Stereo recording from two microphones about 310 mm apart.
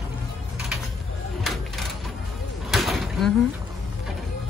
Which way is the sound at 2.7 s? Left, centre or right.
Centre.